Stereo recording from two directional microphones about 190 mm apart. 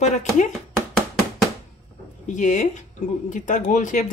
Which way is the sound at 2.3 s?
40° left (ahead or behind).